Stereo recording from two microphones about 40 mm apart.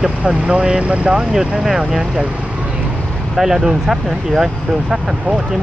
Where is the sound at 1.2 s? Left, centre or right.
Centre.